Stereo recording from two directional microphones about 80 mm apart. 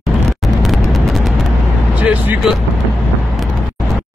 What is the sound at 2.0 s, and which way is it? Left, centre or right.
Vehicle, centre.